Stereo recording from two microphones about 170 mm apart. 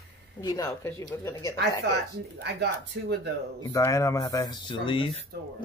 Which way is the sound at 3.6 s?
20° left (ahead or behind).